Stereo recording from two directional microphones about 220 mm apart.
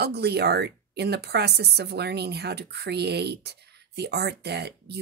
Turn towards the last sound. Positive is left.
turn(degrees=-50)  # may be behind; listen again after turning